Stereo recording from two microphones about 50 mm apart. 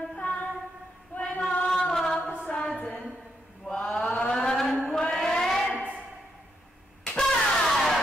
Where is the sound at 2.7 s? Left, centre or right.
Left.